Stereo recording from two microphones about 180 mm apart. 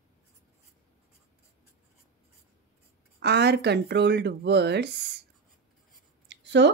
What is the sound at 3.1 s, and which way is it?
Speech, 65° right (ahead or behind).